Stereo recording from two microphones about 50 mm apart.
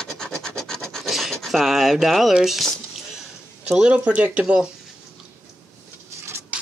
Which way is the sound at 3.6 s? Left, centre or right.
Centre.